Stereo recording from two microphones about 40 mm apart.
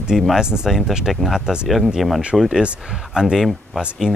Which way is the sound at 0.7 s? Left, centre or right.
Centre.